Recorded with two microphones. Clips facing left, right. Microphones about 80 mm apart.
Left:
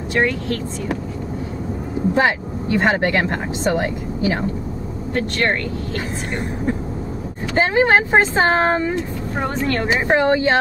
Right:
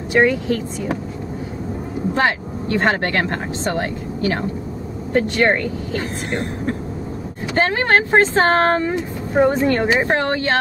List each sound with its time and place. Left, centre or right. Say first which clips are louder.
0.1 s speech: right 4 dB; centre
2.1 s speech: even; centre
5.1 s speech: right 4 dB; centre
5.9 s speech: right 3 dB; centre
8.9 s vehicle: right 5 dB; centre
9.6 s speech: right 3 dB; centre
10.0 s speech: left 3 dB; centre